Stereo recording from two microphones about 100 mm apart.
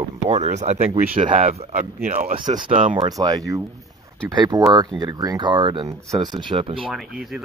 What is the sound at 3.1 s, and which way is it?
Speech, 35° right (ahead or behind).